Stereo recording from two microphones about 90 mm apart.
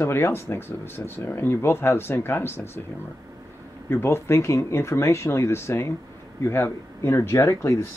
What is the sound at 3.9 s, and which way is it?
Speech, 25° left (ahead or behind).